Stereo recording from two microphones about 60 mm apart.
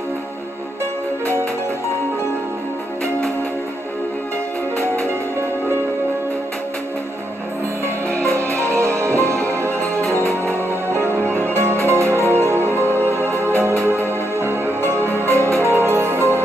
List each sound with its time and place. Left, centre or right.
8.1 s music: right
11.1 s music: right